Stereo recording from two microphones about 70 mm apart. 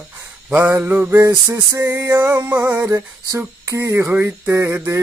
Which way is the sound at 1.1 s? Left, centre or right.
Right.